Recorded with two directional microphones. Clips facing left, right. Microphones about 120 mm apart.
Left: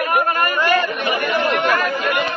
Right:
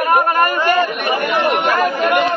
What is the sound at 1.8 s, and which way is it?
Speech, 55° right (ahead or behind).